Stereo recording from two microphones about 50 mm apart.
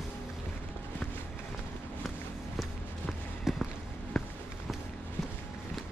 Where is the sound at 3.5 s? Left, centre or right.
Centre.